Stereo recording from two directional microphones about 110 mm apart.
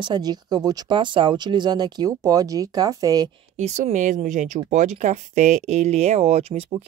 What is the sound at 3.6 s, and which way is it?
Speech, 90° right.